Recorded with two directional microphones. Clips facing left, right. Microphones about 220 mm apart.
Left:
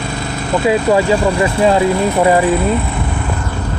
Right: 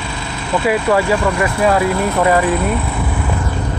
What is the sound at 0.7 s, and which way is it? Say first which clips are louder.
Speech: left 2 dB; 20° left (ahead or behind).